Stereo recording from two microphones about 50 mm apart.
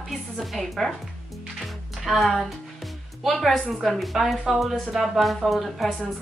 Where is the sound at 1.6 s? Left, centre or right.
Centre.